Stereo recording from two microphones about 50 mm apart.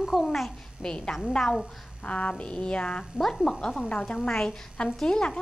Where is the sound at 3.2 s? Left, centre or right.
Centre.